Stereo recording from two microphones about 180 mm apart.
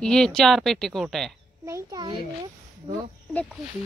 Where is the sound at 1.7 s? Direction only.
15° right (ahead or behind).